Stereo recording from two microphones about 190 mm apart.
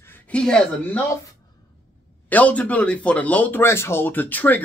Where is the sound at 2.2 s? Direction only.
10° left (ahead or behind).